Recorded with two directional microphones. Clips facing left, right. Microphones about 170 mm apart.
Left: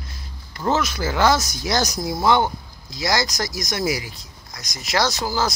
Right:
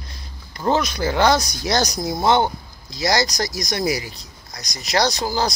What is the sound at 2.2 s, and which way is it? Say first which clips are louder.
Speech: right 1 dB; 25° right (ahead or behind).